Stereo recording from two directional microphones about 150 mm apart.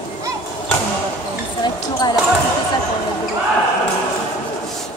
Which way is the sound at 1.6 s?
30° left (ahead or behind).